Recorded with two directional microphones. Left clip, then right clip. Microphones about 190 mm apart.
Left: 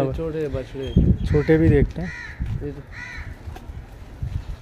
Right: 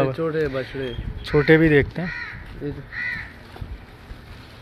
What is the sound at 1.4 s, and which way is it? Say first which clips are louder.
Speech: right 3 dB; 10° left (ahead or behind).